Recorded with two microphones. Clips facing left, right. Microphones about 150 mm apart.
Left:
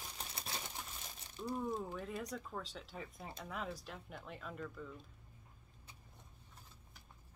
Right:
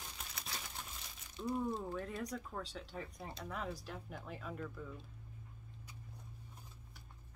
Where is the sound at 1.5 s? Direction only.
Centre (ahead or behind).